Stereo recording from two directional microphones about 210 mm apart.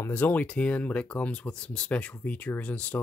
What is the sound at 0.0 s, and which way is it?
Speech, 10° left (ahead or behind).